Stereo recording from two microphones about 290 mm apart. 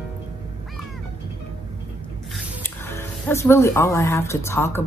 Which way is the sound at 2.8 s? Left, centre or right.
Centre.